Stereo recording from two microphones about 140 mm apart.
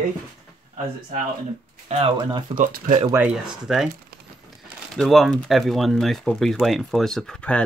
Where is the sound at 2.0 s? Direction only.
35° right (ahead or behind).